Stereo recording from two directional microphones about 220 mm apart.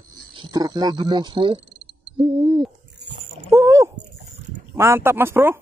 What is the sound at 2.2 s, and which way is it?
Hoot, 25° right (ahead or behind).